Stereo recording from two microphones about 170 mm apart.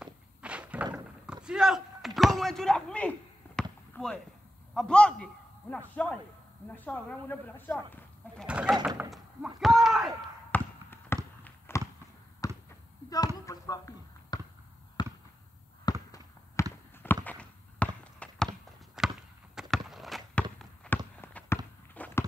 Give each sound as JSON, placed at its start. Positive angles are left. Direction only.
{"t": 0.0, "sound": "thunk", "side_deg": -5}
{"t": 0.9, "sound": "a sound", "side_deg": -5}
{"t": 4.7, "sound": "a man's voice", "side_deg": 5}
{"t": 8.5, "sound": "bird", "side_deg": -5}
{"t": 9.1, "sound": "speech", "side_deg": 0}
{"t": 10.5, "sound": "trickle", "side_deg": 15}
{"t": 11.4, "sound": "a sound", "side_deg": 15}
{"t": 12.4, "sound": "basketball bounce", "side_deg": 20}
{"t": 15.0, "sound": "fireworks", "side_deg": 25}
{"t": 15.8, "sound": "a sound", "side_deg": 20}
{"t": 20.9, "sound": "walk", "side_deg": 5}
{"t": 21.2, "sound": "a sound", "side_deg": 10}